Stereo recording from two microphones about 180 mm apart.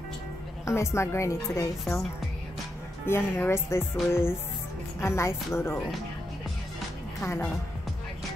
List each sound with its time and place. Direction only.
0.7 s a woman's voice: 15° left (ahead or behind)
3.1 s a woman's voice: 15° left (ahead or behind)
7.2 s a woman's voice: 15° left (ahead or behind)